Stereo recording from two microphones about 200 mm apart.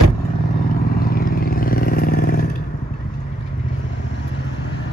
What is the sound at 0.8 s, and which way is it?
Vehicle, 45° left (ahead or behind).